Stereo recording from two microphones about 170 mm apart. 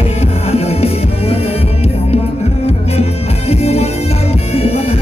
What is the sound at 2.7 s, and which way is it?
Music, 35° left (ahead or behind).